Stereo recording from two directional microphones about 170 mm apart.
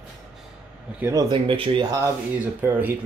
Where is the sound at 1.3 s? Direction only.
30° right (ahead or behind).